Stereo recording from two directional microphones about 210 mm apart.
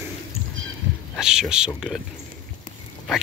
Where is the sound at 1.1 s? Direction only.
5° right (ahead or behind).